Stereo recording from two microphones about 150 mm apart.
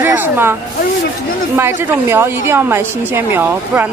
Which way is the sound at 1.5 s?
15° right (ahead or behind).